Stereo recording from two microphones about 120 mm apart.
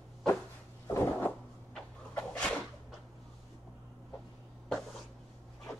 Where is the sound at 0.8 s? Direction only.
20° left (ahead or behind).